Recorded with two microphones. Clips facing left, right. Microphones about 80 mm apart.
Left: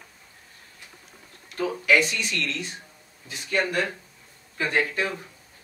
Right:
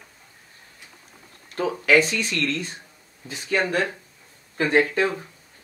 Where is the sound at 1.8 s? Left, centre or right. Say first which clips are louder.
Right 3 dB; right.